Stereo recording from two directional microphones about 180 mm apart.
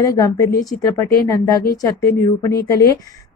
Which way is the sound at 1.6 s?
55° left (ahead or behind).